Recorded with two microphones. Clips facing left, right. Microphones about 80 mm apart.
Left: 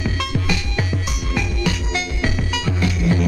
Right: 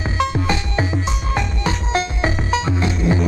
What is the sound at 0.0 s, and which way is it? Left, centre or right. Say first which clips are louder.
Music: right 4 dB; right.